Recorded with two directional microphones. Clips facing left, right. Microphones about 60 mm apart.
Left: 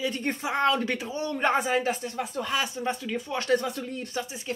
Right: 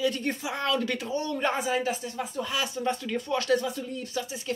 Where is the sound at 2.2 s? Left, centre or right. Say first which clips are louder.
Left 1 dB; left.